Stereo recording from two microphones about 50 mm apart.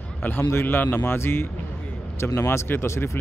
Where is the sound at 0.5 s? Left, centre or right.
Left.